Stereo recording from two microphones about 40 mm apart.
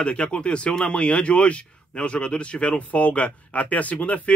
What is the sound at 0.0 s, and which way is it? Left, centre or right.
A man's voice, left.